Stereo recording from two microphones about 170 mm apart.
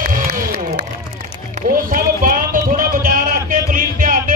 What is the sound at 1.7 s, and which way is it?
Music, 55° right (ahead or behind).